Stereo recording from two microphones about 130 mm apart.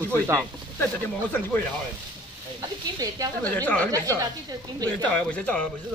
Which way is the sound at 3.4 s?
10° left (ahead or behind).